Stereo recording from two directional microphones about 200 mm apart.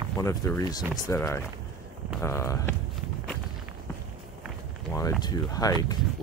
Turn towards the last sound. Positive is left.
turn(degrees=20)  # may be behind; listen again after turning